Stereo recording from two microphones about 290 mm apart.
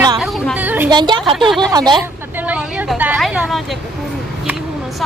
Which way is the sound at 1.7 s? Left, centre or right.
Centre.